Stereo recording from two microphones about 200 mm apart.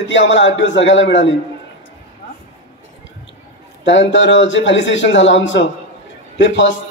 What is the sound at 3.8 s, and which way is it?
A man's voice, 65° left (ahead or behind).